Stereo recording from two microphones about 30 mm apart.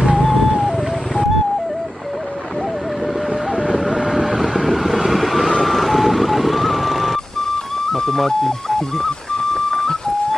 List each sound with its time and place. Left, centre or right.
0.2 s music: centre
3.5 s vehicle: centre
7.5 s music: centre
8.2 s a sound: centre